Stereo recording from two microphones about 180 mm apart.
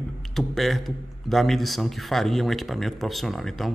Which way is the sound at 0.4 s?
Centre (ahead or behind).